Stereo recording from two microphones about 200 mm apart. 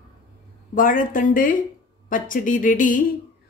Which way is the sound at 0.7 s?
40° left (ahead or behind).